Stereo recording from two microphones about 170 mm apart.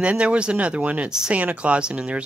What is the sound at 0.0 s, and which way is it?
Speech, 5° right (ahead or behind).